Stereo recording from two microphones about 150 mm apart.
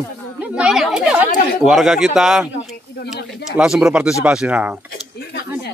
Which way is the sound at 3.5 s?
5° right (ahead or behind).